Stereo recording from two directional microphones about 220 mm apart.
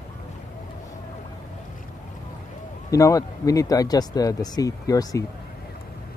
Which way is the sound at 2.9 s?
15° left (ahead or behind).